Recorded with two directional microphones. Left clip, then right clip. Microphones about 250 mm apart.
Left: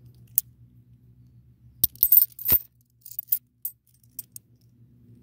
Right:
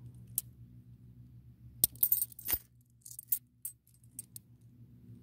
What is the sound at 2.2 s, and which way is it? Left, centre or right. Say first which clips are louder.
Coin: left 10 dB; left.